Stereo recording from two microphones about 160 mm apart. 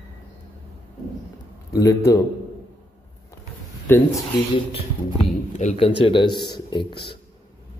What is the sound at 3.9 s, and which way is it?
Speech, 15° left (ahead or behind).